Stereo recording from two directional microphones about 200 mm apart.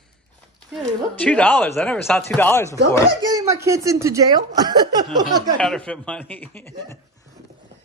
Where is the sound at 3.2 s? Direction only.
20° right (ahead or behind).